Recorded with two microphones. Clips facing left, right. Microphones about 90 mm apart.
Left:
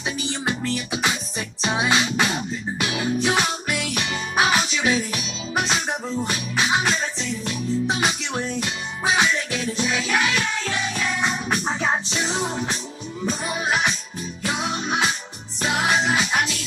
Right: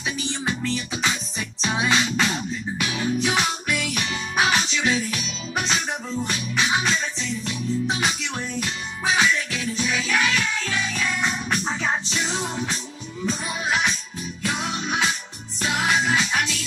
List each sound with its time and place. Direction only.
0.3 s music: 15° left (ahead or behind)